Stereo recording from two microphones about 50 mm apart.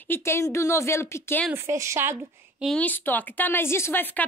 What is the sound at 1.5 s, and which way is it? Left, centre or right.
Speech, right.